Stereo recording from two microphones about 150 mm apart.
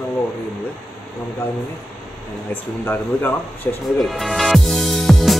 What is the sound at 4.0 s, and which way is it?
Music, centre (ahead or behind).